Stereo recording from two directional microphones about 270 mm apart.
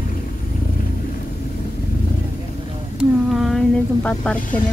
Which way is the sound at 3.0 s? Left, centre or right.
Centre.